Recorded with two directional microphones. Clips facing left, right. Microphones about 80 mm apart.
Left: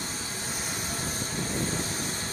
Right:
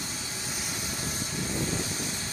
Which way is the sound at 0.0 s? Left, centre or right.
Left.